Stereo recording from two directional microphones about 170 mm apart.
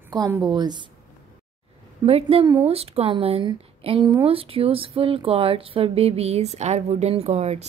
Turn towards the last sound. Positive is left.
turn(degrees=-40)  # may be behind; listen again after turning